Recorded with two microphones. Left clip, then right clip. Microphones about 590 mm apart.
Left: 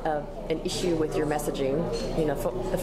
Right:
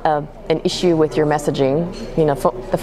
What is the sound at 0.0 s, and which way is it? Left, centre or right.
A woman's voice, right.